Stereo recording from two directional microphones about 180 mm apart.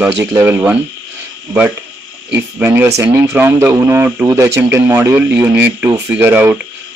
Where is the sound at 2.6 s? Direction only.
10° right (ahead or behind).